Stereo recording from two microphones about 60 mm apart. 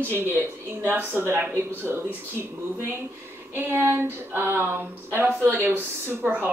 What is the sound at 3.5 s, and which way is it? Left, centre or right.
Speech, right.